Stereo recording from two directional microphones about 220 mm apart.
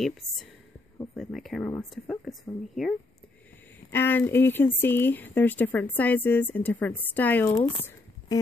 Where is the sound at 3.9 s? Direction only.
10° left (ahead or behind).